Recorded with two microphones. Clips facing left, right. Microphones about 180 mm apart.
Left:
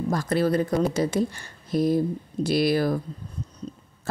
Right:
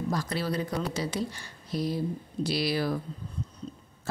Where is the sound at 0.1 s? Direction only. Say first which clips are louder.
Left 10 dB; 50° left (ahead or behind).